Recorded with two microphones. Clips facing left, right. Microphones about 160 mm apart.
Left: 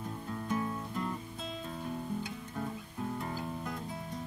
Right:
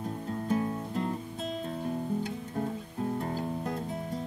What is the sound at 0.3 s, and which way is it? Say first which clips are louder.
Music: right 5 dB; 35° right (ahead or behind).